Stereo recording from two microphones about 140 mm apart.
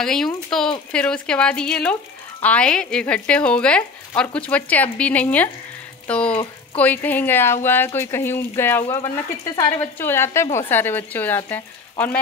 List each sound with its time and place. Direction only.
0.0 s speech: 5° left (ahead or behind)